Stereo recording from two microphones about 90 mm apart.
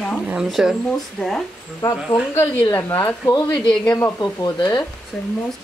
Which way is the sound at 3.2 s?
45° left (ahead or behind).